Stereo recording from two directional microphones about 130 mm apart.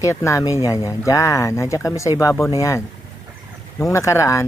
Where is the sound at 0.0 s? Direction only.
25° left (ahead or behind).